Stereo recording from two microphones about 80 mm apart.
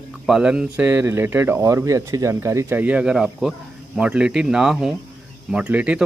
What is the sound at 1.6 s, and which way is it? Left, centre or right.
Speech, right.